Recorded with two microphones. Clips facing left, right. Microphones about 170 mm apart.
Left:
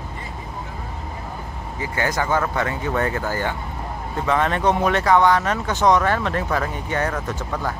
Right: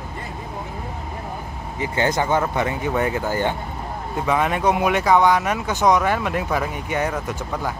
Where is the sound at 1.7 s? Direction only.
20° right (ahead or behind).